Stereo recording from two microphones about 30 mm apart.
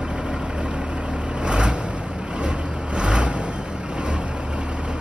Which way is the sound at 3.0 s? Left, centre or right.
Right.